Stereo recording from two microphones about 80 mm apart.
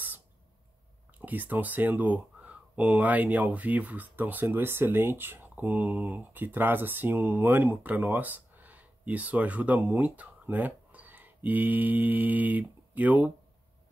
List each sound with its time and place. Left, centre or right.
1.2 s speech: right